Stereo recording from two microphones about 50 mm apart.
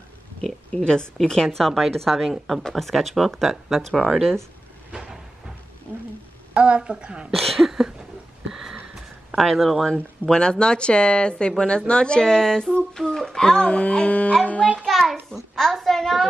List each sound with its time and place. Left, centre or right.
0.7 s speech: centre
1.6 s a woman's voice: centre
6.5 s a woman's voice: right
7.3 s a sound: centre
9.3 s a woman's voice: centre
10.2 s speech: centre
14.8 s a sound: centre